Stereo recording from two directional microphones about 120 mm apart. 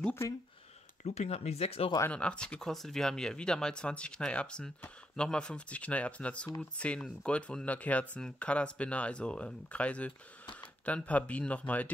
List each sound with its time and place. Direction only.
1.0 s speech: 65° left (ahead or behind)
2.1 s speech: 10° left (ahead or behind)